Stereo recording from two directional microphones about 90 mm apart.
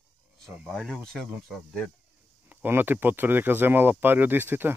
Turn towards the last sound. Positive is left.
turn(degrees=-20)  # may be behind; listen again after turning